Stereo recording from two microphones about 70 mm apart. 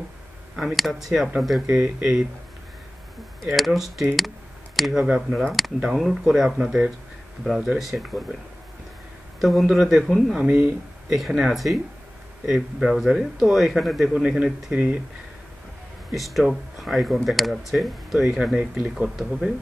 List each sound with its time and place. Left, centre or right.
0.6 s speech: centre
3.4 s speech: centre
9.4 s speech: centre
10.3 s speech: centre
16.1 s speech: centre
18.6 s speech: centre
19.0 s speech: centre